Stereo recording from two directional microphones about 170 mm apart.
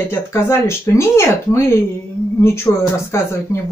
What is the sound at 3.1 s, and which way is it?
Speech, 15° left (ahead or behind).